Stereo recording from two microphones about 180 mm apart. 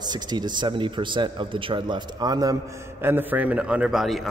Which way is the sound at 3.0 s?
10° right (ahead or behind).